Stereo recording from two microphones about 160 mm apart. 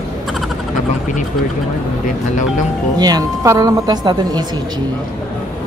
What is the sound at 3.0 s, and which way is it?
A woman's voice, 25° right (ahead or behind).